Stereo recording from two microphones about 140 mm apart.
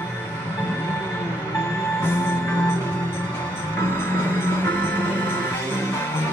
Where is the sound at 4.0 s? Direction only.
15° left (ahead or behind).